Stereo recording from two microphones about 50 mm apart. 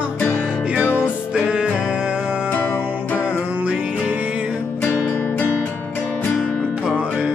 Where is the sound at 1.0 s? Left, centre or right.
Centre.